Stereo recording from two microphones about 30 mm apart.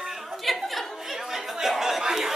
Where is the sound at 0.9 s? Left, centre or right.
Centre.